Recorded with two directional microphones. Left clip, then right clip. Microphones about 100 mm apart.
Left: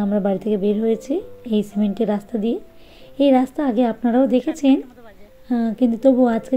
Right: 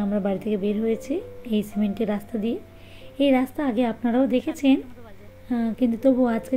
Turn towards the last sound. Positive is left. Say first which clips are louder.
# left 5 dB
turn(degrees=45)  # may be behind; listen again after turning